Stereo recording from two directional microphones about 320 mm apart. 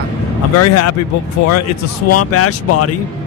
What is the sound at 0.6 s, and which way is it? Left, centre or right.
Speech, left.